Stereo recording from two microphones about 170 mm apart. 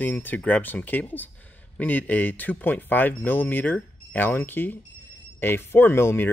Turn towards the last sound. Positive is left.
turn(degrees=15)  # may be behind; listen again after turning